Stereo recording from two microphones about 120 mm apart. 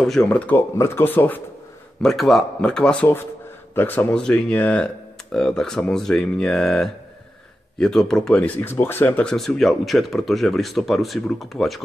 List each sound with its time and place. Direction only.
0.0 s speech: 5° left (ahead or behind)
0.5 s speech: 20° left (ahead or behind)
2.0 s speech: centre (ahead or behind)